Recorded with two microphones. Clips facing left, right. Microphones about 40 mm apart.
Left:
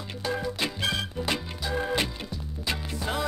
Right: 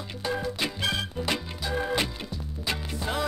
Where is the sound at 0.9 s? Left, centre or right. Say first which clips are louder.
Even; right.